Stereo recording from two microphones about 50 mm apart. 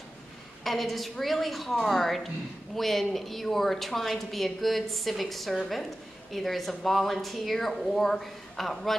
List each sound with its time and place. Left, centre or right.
0.7 s a woman's voice: centre